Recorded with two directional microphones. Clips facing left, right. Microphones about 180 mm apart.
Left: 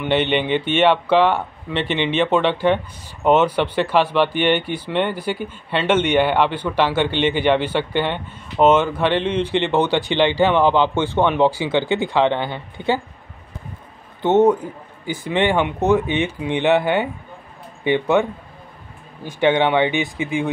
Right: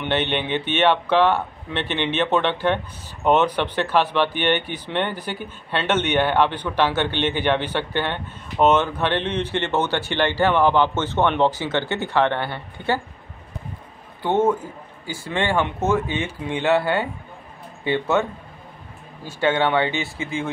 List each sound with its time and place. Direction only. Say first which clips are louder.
0.0 s speech: left 4 dB; 10° left (ahead or behind)
14.2 s speech: left 5 dB; 20° left (ahead or behind)
19.2 s speech: left 4 dB; 15° left (ahead or behind)